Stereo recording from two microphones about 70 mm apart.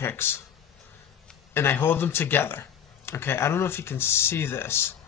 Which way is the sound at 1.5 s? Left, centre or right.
Left.